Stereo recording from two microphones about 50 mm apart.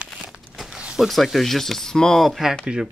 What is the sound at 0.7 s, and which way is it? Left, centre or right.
Mechanisms, centre.